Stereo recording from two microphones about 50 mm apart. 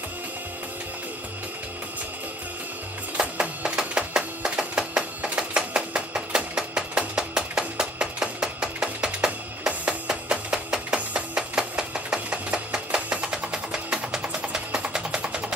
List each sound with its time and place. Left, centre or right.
3.2 s music: centre
5.8 s a sound: centre
8.8 s music: centre